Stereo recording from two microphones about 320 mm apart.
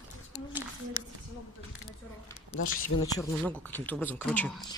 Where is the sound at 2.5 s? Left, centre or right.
Left.